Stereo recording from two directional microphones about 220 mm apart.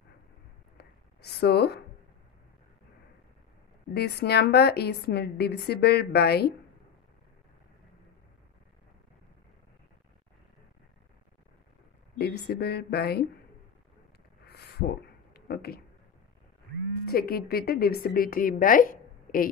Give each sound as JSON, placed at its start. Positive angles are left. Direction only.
{"t": 0.7, "sound": "a sound", "side_deg": 50}
{"t": 3.9, "sound": "a woman's voice", "side_deg": 45}
{"t": 12.2, "sound": "a woman's voice", "side_deg": 50}
{"t": 14.4, "sound": "a sound", "side_deg": 45}
{"t": 15.3, "sound": "speech", "side_deg": 45}
{"t": 17.0, "sound": "a woman's voice", "side_deg": 45}